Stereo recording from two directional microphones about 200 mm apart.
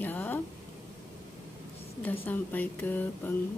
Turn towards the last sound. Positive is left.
turn(degrees=10)  # may be behind; listen again after turning